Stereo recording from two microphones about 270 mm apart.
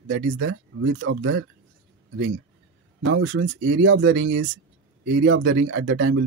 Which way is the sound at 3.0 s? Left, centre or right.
Right.